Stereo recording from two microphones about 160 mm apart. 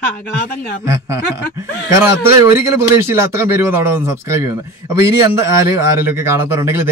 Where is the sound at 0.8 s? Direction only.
20° right (ahead or behind).